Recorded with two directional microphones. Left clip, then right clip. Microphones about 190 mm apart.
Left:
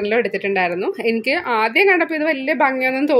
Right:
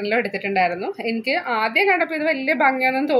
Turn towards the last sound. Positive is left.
turn(degrees=30)  # may be behind; listen again after turning